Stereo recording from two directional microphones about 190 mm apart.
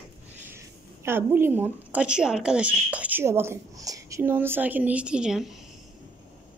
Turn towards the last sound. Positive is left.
turn(degrees=0)  # may be behind; listen again after turning